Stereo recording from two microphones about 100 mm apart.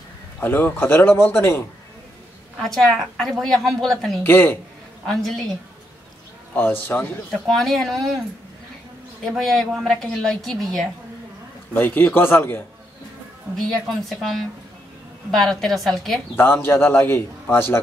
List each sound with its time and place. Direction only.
0.4 s a man's voice: 20° left (ahead or behind)
2.6 s a woman's voice: centre (ahead or behind)
4.2 s a man's voice: 20° left (ahead or behind)
5.0 s a woman's voice: 5° left (ahead or behind)
6.5 s a man's voice: 20° left (ahead or behind)
7.4 s a woman's voice: 5° left (ahead or behind)
9.2 s a woman's voice: centre (ahead or behind)
11.7 s a man's voice: 20° left (ahead or behind)
13.6 s a woman's voice: 5° left (ahead or behind)
16.3 s a man's voice: 20° left (ahead or behind)